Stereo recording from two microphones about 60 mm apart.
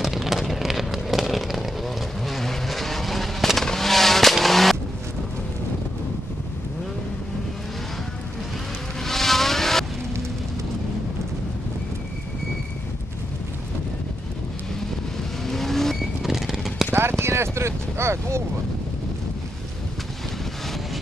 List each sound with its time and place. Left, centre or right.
0.0 s vehicle: centre
9.0 s vehicle: centre
15.4 s vehicle: centre
17.2 s speech: right